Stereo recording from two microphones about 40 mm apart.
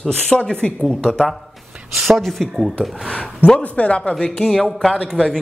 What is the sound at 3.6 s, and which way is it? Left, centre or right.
Speech, left.